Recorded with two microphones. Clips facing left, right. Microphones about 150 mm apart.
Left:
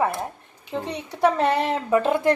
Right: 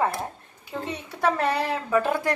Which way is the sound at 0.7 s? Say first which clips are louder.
Left 3 dB; 20° left (ahead or behind).